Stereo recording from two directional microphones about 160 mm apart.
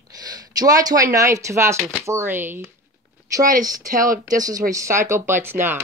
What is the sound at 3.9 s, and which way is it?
Speech, 55° right (ahead or behind).